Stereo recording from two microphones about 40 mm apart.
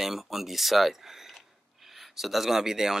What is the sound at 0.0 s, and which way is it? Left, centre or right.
Speech, centre.